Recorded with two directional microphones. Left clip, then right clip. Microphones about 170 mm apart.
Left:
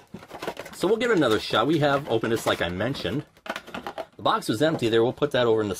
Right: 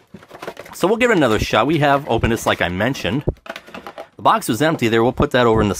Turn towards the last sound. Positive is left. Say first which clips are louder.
# right 7 dB
turn(degrees=-45)  # may be behind; listen again after turning